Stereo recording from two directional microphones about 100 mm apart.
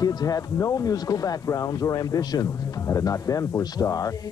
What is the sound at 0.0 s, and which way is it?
Speech, 40° left (ahead or behind).